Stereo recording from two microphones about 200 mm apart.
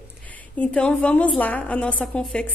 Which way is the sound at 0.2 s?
10° left (ahead or behind).